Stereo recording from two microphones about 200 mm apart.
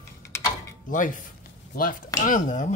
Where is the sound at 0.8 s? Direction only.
40° left (ahead or behind).